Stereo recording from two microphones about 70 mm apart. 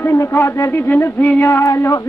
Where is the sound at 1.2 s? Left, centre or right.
Centre.